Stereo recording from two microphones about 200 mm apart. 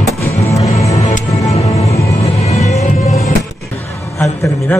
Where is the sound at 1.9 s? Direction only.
15° left (ahead or behind).